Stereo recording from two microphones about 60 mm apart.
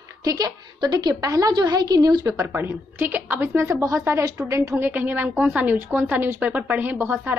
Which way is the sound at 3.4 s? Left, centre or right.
Right.